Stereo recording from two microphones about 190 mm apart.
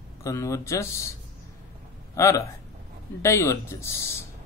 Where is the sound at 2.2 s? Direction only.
15° left (ahead or behind).